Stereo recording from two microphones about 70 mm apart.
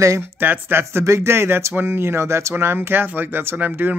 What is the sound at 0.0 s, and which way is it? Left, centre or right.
Speech, right.